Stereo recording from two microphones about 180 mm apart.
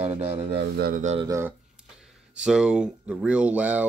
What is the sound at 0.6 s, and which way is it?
Speech, 60° right (ahead or behind).